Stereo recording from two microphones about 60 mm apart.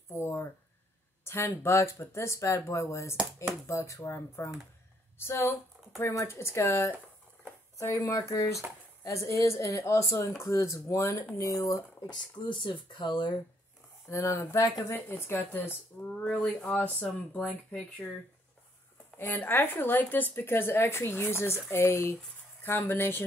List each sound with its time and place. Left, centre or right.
0.1 s a sound: left
1.2 s speech: left
8.1 s speech: left
11.3 s speech: left
14.0 s speech: left
14.9 s a woman's voice: left
16.1 s a woman's voice: centre; by 23.2 s left